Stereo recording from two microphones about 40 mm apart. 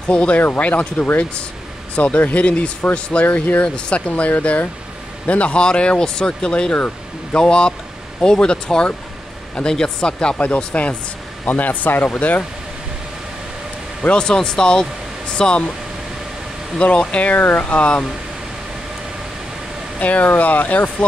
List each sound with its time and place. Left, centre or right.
0.1 s speech: left
0.4 s speech: left
3.3 s speech: left
3.6 s speech: left
4.1 s speech: left; by 10.3 s centre
10.3 s speech: left
12.1 s speech: left
14.1 s speech: centre
16.7 s speech: left
17.3 s speech: left
20.0 s speech: left